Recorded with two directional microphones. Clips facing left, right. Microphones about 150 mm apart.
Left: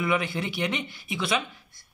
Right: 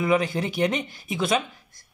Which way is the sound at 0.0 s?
40° right (ahead or behind).